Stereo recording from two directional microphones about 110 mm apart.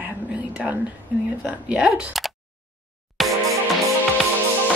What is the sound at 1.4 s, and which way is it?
Speech, 10° right (ahead or behind).